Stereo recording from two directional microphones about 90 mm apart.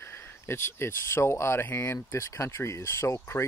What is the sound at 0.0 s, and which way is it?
Speech, 25° left (ahead or behind).